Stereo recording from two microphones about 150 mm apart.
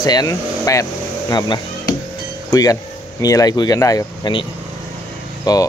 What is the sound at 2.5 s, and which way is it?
Speech, 25° left (ahead or behind).